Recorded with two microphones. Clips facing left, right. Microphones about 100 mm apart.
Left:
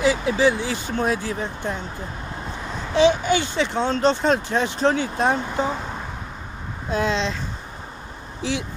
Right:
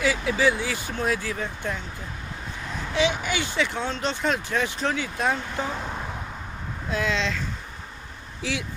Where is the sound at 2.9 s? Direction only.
30° left (ahead or behind).